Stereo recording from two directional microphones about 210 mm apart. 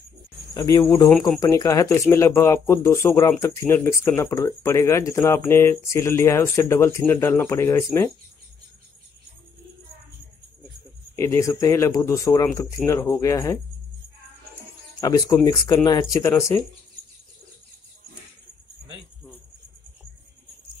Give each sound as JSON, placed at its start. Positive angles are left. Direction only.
{"t": 0.6, "sound": "speech", "side_deg": 15}
{"t": 11.1, "sound": "speech", "side_deg": 15}
{"t": 15.0, "sound": "speech", "side_deg": 15}